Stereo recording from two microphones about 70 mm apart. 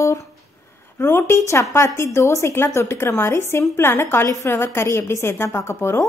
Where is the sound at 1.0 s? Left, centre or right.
Left.